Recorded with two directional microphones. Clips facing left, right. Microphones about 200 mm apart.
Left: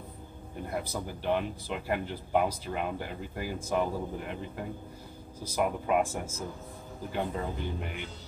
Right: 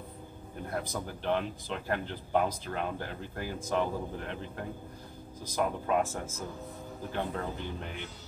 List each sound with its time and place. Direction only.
0.7 s speech: 5° left (ahead or behind)